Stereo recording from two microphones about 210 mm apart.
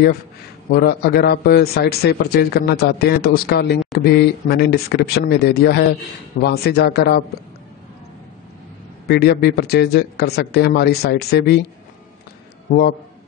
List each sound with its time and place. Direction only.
0.7 s a man's voice: 50° left (ahead or behind)
9.0 s a man's voice: 50° left (ahead or behind)